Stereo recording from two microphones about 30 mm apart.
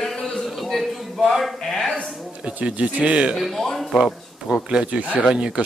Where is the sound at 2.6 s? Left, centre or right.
Right.